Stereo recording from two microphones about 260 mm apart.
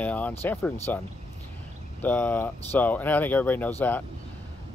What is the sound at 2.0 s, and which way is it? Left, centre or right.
Speech, centre.